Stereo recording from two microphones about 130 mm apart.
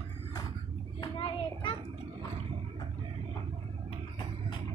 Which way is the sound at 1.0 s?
35° left (ahead or behind).